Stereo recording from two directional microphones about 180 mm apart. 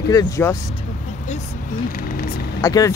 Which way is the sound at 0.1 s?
20° left (ahead or behind).